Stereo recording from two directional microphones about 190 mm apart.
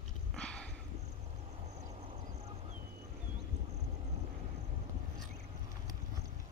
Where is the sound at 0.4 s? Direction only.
5° left (ahead or behind).